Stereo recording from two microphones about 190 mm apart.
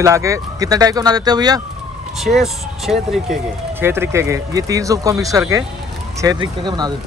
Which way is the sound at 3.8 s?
10° right (ahead or behind).